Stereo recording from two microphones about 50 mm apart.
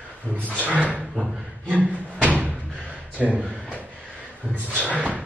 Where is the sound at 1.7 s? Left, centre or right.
Right.